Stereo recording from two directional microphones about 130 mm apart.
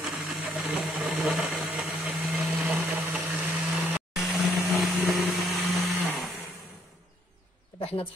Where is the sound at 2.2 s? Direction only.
5° right (ahead or behind).